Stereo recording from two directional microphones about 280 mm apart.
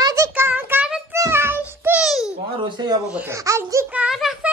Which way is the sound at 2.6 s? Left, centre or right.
Centre.